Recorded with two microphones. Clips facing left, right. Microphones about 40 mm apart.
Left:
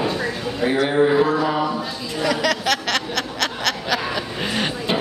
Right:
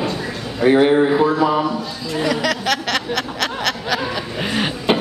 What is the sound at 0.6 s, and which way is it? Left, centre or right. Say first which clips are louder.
Speech: right 7 dB; right.